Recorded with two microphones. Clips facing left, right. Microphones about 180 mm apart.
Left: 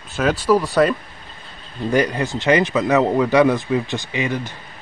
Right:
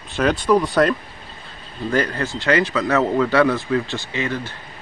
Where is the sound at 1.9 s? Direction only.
15° left (ahead or behind).